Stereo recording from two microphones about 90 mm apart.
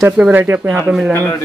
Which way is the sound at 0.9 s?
10° right (ahead or behind).